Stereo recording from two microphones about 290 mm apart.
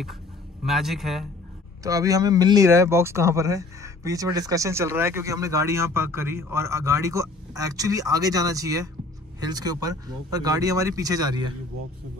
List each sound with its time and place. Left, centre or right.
0.7 s a man's voice: centre
1.8 s speech: centre